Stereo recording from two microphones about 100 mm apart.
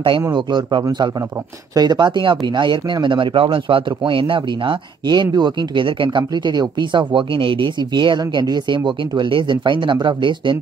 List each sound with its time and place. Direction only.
0.3 s speech: 50° right (ahead or behind)